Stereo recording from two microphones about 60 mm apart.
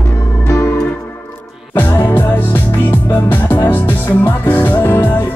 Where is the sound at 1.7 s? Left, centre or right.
Left.